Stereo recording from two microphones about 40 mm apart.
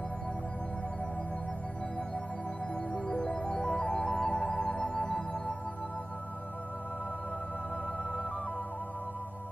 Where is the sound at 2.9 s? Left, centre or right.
Centre.